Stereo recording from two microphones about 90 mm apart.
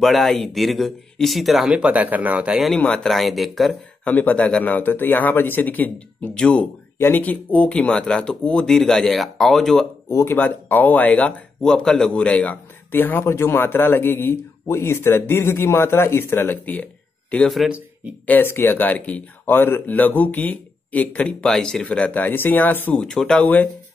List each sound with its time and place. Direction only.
0.0 s speech: centre (ahead or behind)
2.8 s speech: 10° left (ahead or behind)
4.0 s speech: 20° left (ahead or behind)
7.0 s speech: 20° left (ahead or behind); by 9.8 s 5° left (ahead or behind)
10.1 s speech: 25° left (ahead or behind)
22.9 s speech: 5° left (ahead or behind)
23.4 s speech: 20° left (ahead or behind)